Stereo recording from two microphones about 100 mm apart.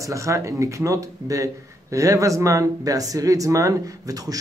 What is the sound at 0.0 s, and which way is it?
Speech, 30° right (ahead or behind).